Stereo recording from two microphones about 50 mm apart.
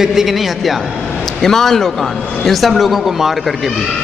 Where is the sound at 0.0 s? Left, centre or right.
Centre.